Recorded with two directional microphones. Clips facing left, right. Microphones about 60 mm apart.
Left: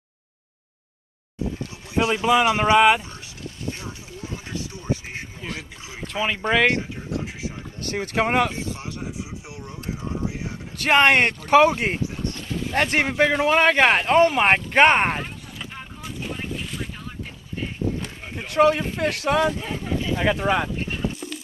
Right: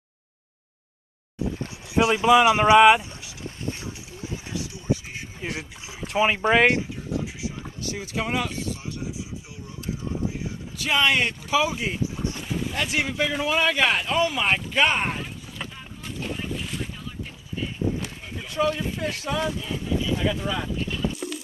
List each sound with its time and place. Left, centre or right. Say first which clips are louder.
2.0 s speech: right 2 dB; centre
4.5 s a sound: right 1 dB; left
5.4 s speech: right 1 dB; right
6.8 s speech: even; left
10.2 s speech: even; left
12.2 s boat: even; centre
12.7 s speech: left 7 dB; left
16.0 s boat: even; centre
18.3 s speech: left 7 dB; left
19.6 s speech: left 1 dB; left
20.2 s speech: left 5 dB; left